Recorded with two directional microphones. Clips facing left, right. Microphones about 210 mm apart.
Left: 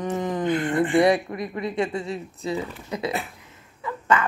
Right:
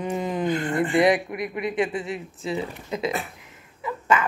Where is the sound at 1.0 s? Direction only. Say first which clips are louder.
Right 1 dB; 20° right (ahead or behind).